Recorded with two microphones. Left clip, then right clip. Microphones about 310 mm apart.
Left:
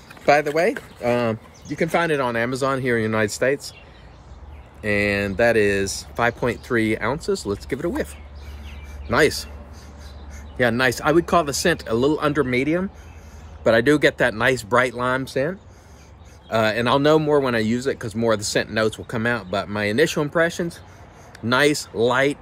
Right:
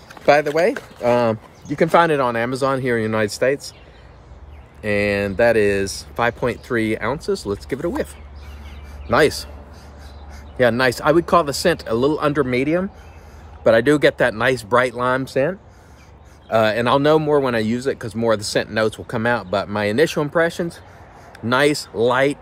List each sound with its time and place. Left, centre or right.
0.1 s speech: centre
4.8 s speech: centre
9.1 s speech: centre
10.6 s speech: centre